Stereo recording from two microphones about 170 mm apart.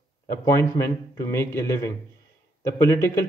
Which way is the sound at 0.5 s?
15° left (ahead or behind).